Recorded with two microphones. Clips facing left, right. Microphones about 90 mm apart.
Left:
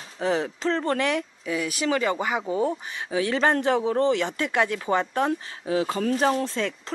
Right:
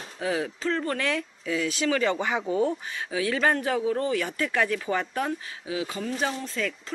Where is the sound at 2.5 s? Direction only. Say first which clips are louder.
Even; 20° left (ahead or behind).